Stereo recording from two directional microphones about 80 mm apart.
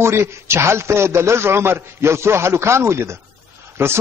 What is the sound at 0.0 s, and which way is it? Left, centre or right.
A man's voice, right.